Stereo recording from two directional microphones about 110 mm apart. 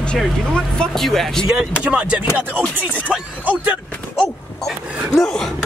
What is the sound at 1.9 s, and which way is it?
Speech, 10° right (ahead or behind).